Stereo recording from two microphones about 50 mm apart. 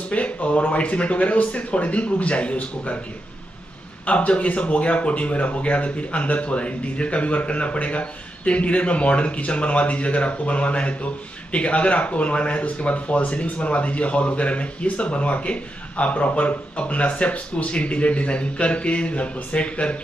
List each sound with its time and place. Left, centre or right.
0.1 s speech: left
4.0 s speech: left